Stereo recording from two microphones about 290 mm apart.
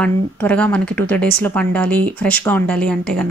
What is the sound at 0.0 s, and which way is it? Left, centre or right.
Speech, centre.